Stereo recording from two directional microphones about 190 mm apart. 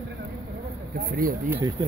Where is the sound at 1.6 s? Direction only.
20° right (ahead or behind).